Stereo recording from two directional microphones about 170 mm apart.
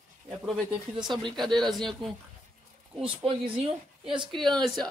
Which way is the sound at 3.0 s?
30° right (ahead or behind).